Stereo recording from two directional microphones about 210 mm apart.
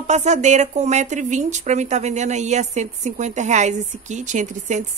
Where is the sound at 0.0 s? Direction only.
35° right (ahead or behind).